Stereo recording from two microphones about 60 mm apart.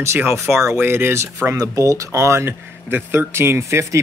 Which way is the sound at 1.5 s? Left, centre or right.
Right.